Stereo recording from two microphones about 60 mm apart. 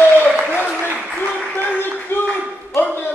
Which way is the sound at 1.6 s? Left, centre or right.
Left.